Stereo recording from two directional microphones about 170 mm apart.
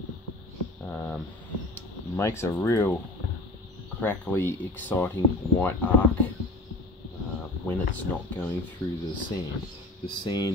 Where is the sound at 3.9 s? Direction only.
10° left (ahead or behind).